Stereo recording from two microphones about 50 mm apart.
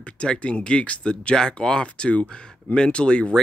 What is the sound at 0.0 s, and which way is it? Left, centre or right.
Speech, left.